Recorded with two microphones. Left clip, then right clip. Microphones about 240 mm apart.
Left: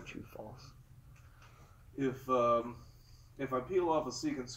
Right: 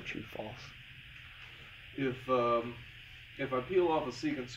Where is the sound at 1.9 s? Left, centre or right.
Centre.